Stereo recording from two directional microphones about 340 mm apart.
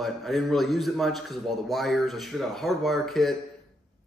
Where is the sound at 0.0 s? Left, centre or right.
Centre.